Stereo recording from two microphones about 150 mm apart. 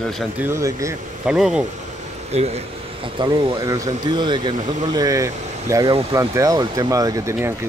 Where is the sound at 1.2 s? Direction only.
5° right (ahead or behind).